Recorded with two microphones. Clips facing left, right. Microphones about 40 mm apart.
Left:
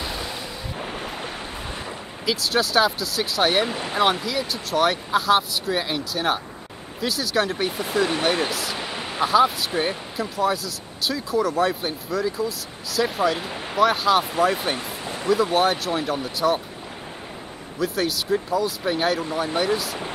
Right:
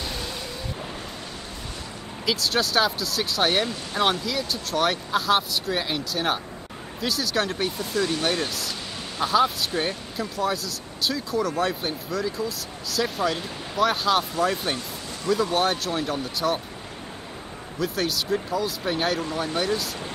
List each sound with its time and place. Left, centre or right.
0.0 s boat: centre
0.7 s ocean: left
2.2 s speech: centre
3.6 s speech: left
4.0 s speech: centre
7.8 s speech: left
9.2 s speech: centre
17.7 s speech: centre